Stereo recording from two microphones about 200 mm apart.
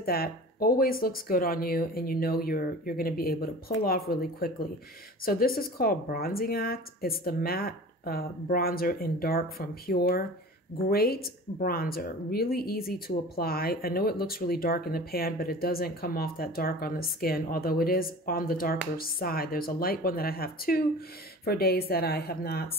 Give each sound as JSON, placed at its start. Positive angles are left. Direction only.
{"t": 0.0, "sound": "speech", "side_deg": 50}